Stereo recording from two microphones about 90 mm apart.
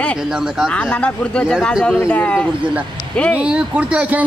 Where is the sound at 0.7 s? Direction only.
15° left (ahead or behind).